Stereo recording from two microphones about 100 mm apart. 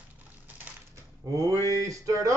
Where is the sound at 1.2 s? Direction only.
35° right (ahead or behind).